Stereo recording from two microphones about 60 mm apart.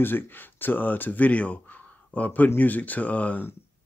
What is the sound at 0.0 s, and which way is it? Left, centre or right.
Speech, left.